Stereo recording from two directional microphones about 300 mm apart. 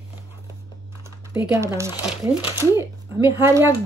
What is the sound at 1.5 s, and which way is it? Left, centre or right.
Speech, centre.